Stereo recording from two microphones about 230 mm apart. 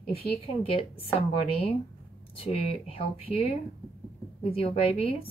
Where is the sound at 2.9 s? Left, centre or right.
Left.